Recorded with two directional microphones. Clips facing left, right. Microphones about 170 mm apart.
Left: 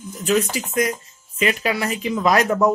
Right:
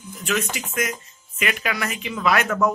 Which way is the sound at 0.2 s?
35° left (ahead or behind).